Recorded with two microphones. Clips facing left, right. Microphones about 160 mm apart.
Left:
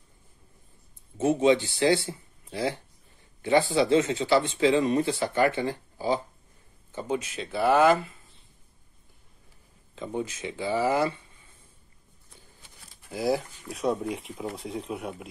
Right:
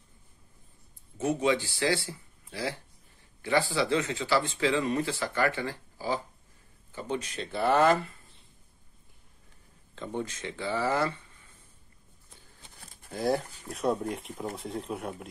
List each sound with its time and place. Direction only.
1.1 s speech: 25° left (ahead or behind); by 8.1 s centre (ahead or behind)
9.9 s speech: 10° left (ahead or behind)
13.1 s speech: 5° left (ahead or behind)